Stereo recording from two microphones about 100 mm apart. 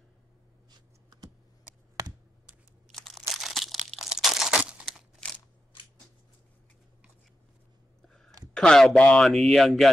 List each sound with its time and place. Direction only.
0.7 s computer keyboard: 45° right (ahead or behind)
2.0 s a sound: 40° right (ahead or behind)
2.9 s crunch: 5° left (ahead or behind)
4.8 s crumpling: 5° left (ahead or behind)
8.1 s a sound: 5° left (ahead or behind)
8.5 s a man's voice: 5° left (ahead or behind)